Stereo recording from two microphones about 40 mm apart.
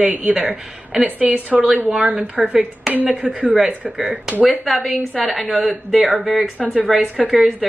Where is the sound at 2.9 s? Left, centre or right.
Right.